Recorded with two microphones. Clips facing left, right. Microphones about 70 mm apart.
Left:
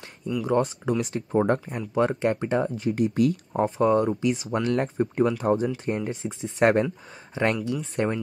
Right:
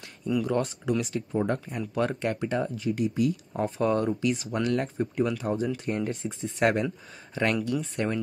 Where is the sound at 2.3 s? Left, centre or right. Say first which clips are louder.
Left 5 dB; left.